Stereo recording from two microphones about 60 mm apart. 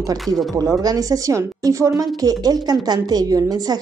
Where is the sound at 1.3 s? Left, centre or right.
Right.